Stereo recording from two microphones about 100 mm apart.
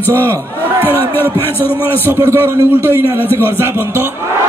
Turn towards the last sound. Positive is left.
turn(degrees=-25)  # may be behind; listen again after turning